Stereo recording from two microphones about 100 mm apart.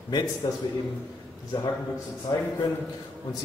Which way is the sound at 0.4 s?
50° left (ahead or behind).